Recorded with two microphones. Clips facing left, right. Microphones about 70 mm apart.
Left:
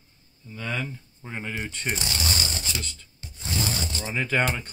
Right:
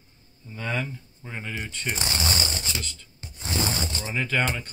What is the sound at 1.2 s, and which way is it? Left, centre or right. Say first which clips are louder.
Speech: left 2 dB; centre.